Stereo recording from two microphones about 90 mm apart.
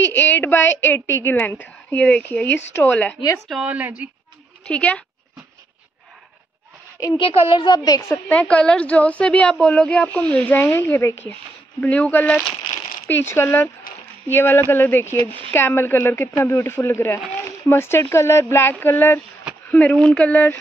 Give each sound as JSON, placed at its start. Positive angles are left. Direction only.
{"t": 0.0, "sound": "a woman's voice", "side_deg": 25}
{"t": 3.5, "sound": "a woman's voice", "side_deg": -15}
{"t": 4.6, "sound": "a woman's voice", "side_deg": 10}
{"t": 7.2, "sound": "a woman's voice", "side_deg": 70}
{"t": 8.3, "sound": "a woman's voice", "side_deg": 15}